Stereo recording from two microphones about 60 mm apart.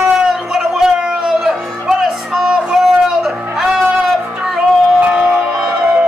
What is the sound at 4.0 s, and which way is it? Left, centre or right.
Music, centre.